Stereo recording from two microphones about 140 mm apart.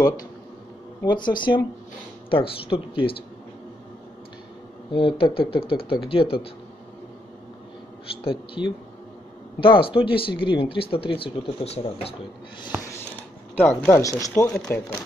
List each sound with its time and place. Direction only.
1.0 s speech: 35° left (ahead or behind)
4.9 s speech: 40° left (ahead or behind)
8.6 s speech: 5° right (ahead or behind)
9.6 s speech: 40° left (ahead or behind)
13.6 s speech: 15° left (ahead or behind)